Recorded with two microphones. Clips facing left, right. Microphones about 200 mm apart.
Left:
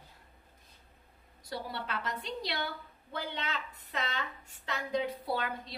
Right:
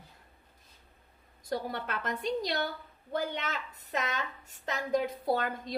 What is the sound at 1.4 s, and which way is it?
A woman's voice, 50° right (ahead or behind).